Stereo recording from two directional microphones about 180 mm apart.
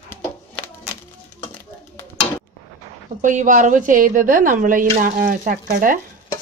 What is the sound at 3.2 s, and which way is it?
A woman's voice, 45° right (ahead or behind).